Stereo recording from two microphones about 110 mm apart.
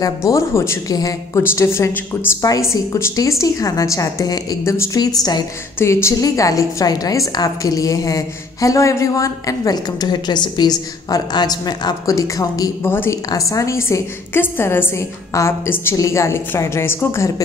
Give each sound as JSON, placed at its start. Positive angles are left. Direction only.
{"t": 0.0, "sound": "a woman's voice", "side_deg": 30}
{"t": 1.4, "sound": "a woman's voice", "side_deg": 20}
{"t": 5.8, "sound": "a woman's voice", "side_deg": 25}
{"t": 12.8, "sound": "a woman's voice", "side_deg": 20}